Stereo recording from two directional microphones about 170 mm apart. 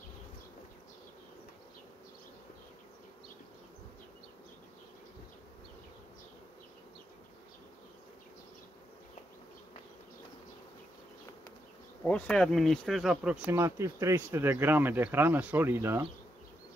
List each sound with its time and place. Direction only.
12.0 s speech: 5° left (ahead or behind); by 16.1 s 15° right (ahead or behind)